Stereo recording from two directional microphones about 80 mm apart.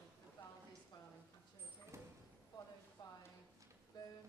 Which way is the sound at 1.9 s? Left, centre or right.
Right.